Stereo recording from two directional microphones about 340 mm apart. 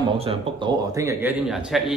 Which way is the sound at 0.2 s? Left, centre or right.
Centre.